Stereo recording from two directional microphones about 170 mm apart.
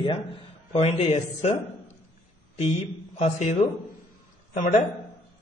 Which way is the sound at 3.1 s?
40° left (ahead or behind).